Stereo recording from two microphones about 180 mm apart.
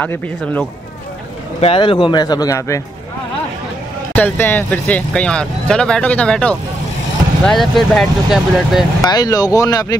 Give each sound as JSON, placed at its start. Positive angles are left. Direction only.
{"t": 1.6, "sound": "speech", "side_deg": 30}
{"t": 4.1, "sound": "speech", "side_deg": 10}
{"t": 9.0, "sound": "speech", "side_deg": 20}